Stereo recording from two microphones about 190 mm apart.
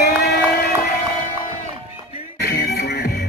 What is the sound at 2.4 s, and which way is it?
Music, 55° left (ahead or behind).